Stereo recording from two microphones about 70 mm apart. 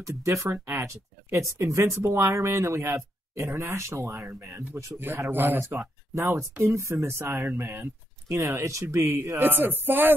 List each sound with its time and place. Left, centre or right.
0.0 s speech: right
4.9 s speech: right